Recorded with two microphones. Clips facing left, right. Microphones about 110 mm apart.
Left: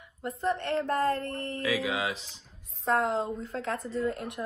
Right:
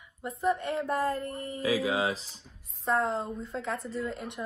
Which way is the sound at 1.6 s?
35° right (ahead or behind).